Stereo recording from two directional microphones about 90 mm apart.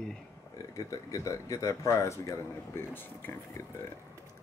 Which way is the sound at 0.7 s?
40° left (ahead or behind).